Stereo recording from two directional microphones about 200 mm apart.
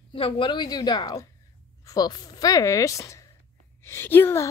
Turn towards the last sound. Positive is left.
turn(degrees=10)  # may be behind; listen again after turning